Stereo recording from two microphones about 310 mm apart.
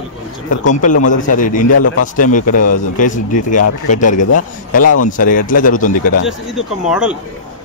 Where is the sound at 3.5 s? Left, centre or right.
Left.